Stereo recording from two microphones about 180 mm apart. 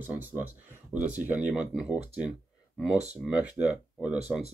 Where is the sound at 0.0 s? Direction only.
10° right (ahead or behind).